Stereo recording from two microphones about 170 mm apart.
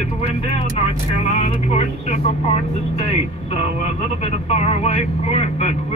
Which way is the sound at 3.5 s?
40° left (ahead or behind).